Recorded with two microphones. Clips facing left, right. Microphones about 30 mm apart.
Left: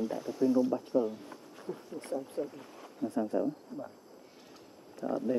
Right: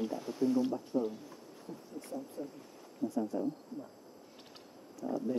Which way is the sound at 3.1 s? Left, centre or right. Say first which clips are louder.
Left 5 dB; left.